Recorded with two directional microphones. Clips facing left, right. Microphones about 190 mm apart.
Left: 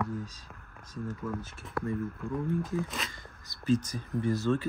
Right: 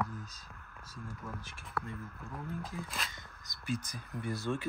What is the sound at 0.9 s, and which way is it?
Speech, 10° right (ahead or behind).